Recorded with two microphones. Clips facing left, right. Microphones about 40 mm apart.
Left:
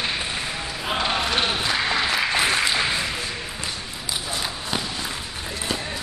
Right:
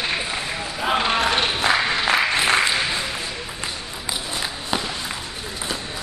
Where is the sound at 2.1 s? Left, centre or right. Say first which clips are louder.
Right 3 dB; centre.